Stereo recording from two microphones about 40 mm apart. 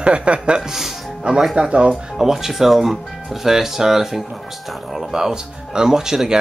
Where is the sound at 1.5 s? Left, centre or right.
Right.